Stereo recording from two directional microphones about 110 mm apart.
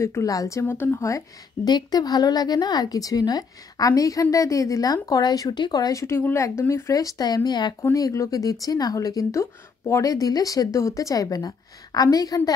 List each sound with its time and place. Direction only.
0.0 s a woman's voice: 30° left (ahead or behind)
7.8 s a woman's voice: 30° left (ahead or behind)